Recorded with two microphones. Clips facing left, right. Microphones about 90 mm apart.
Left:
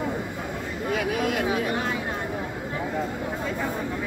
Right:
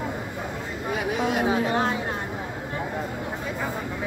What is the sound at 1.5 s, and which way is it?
Chatter, 30° right (ahead or behind).